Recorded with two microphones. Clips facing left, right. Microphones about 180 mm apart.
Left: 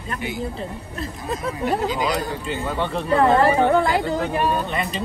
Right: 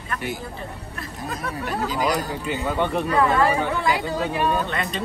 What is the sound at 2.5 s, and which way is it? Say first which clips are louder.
Speech: right 3 dB; 15° right (ahead or behind).